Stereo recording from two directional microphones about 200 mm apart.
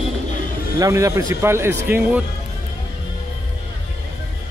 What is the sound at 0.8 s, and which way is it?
Speech, 15° right (ahead or behind).